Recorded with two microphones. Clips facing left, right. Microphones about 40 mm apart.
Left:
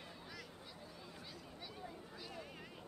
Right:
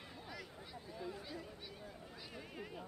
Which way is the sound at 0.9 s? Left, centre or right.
Centre.